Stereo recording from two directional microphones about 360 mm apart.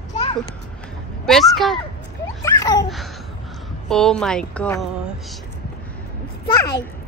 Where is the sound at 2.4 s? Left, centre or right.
Centre.